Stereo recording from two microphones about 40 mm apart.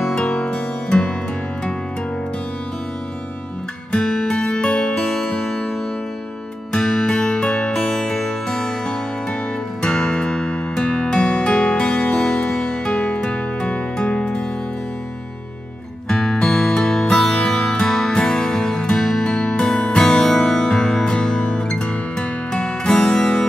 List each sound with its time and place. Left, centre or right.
0.1 s music: left
3.9 s music: centre
6.7 s music: centre
16.1 s music: left